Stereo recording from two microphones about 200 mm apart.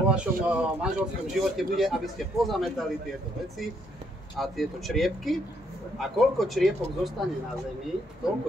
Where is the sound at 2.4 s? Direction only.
Centre (ahead or behind).